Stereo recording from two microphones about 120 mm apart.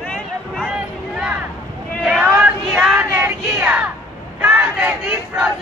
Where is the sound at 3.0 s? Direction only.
20° right (ahead or behind).